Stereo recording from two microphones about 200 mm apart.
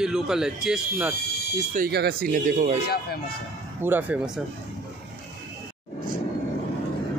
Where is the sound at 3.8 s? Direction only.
10° right (ahead or behind).